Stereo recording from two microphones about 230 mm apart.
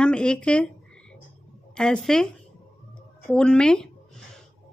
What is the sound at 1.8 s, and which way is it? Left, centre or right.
Speech, centre.